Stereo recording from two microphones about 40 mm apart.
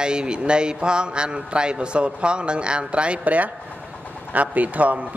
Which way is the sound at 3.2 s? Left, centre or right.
Right.